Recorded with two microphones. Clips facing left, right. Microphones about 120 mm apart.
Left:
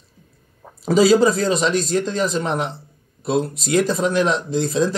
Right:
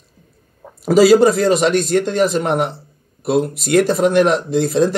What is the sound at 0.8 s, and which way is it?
Speech, 5° right (ahead or behind).